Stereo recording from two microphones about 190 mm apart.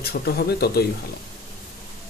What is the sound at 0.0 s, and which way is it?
Speech, 55° left (ahead or behind).